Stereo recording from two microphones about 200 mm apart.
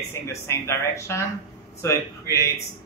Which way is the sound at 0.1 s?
15° left (ahead or behind).